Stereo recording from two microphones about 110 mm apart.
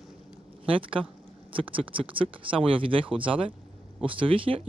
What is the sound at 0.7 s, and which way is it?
Speech, 55° right (ahead or behind).